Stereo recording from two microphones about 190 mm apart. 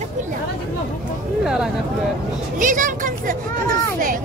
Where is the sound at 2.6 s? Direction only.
45° right (ahead or behind).